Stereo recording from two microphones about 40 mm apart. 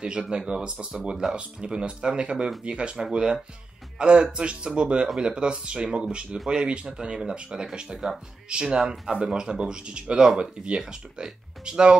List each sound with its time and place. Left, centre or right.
0.0 s speech: right